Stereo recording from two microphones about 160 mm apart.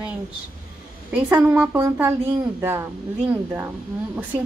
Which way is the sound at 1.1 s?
5° right (ahead or behind).